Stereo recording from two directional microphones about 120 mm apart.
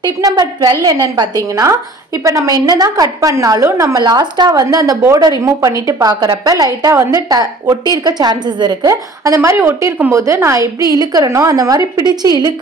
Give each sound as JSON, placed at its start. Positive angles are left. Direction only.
{"t": 0.0, "sound": "a woman's voice", "side_deg": -35}